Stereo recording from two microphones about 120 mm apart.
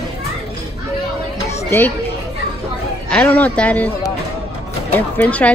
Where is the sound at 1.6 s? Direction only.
20° left (ahead or behind).